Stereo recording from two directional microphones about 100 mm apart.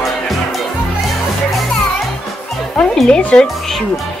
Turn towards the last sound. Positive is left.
turn(degrees=10)  # may be behind; listen again after turning